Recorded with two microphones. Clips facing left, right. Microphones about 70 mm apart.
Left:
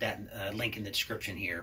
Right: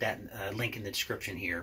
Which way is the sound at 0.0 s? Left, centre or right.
Right.